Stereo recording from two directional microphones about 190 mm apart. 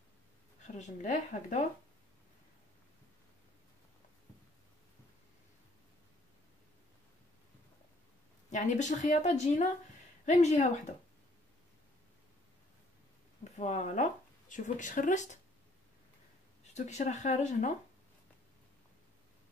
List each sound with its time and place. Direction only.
0.7 s speech: 40° left (ahead or behind)
8.5 s speech: 40° left (ahead or behind)
13.4 s speech: 40° left (ahead or behind)
16.7 s speech: 40° left (ahead or behind)